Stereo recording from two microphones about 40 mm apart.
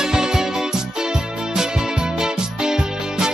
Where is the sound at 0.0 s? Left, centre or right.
Centre.